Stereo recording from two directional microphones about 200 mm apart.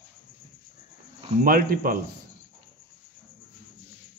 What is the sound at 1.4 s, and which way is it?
Speech, 45° right (ahead or behind).